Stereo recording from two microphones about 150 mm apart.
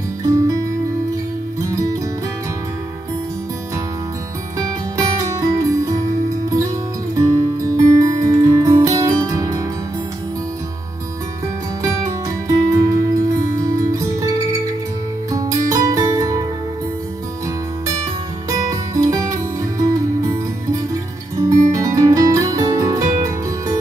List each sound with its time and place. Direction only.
0.2 s music: 20° right (ahead or behind)
1.7 s music: 20° right (ahead or behind)
4.6 s music: 20° right (ahead or behind)
7.2 s music: 20° right (ahead or behind)
11.8 s music: 20° right (ahead or behind)
15.3 s music: 20° right (ahead or behind)
18.5 s music: 20° right (ahead or behind)
21.4 s music: 20° right (ahead or behind)